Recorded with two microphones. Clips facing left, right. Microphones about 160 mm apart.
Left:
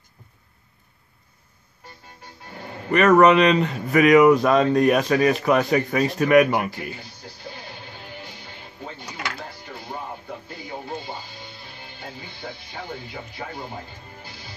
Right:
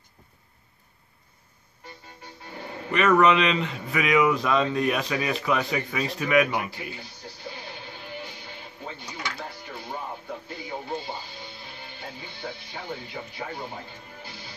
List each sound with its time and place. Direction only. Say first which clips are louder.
2.9 s speech: left 5 dB; 45° left (ahead or behind)